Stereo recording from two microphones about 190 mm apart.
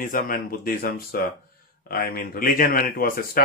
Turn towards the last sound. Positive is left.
turn(degrees=50)  # may be behind; listen again after turning